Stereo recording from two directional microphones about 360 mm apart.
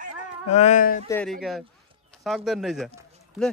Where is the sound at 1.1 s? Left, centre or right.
Centre.